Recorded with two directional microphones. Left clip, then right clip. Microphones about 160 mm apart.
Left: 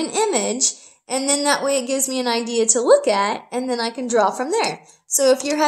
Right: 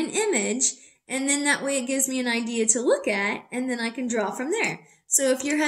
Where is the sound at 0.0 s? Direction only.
15° right (ahead or behind).